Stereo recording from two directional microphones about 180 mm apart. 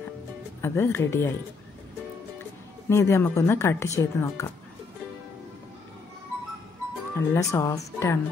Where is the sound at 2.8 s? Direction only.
15° left (ahead or behind).